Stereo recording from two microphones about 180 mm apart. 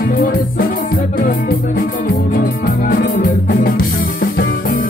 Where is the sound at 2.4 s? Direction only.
50° left (ahead or behind).